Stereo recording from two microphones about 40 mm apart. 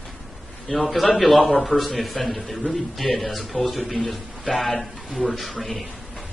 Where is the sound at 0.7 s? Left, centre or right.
Centre.